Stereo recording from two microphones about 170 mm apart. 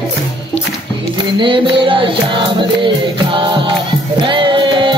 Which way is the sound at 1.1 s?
30° right (ahead or behind).